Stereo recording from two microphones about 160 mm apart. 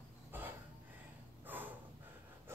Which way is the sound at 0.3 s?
15° right (ahead or behind).